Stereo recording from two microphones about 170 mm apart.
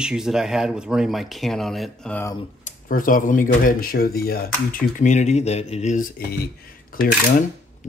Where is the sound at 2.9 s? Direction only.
55° left (ahead or behind).